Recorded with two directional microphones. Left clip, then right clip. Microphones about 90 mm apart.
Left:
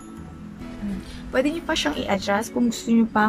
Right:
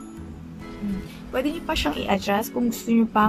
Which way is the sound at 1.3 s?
10° right (ahead or behind).